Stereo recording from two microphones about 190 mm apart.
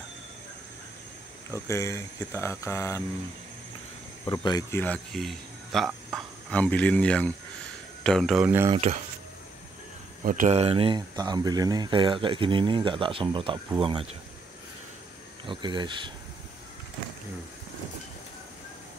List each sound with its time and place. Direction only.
1.5 s speech: 15° left (ahead or behind)
4.2 s speech: 20° left (ahead or behind); by 8.5 s centre (ahead or behind)
10.2 s speech: 45° right (ahead or behind); by 14.0 s 25° right (ahead or behind)
15.4 s speech: 25° right (ahead or behind)